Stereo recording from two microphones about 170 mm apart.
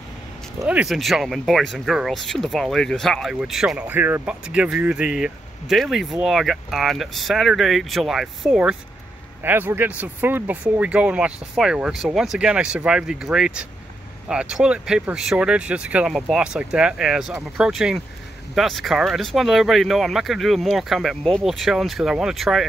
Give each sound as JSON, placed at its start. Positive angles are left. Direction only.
{"t": 0.7, "sound": "speech", "side_deg": -5}